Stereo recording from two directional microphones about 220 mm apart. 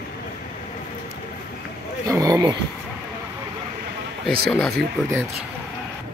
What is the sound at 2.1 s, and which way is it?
Speech, 15° right (ahead or behind).